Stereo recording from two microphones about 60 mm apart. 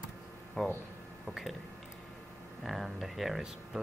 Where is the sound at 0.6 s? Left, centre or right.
Centre.